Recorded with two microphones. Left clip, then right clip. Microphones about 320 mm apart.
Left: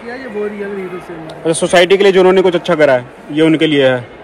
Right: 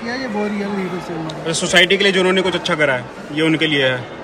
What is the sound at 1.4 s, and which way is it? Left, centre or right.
A man's voice, centre.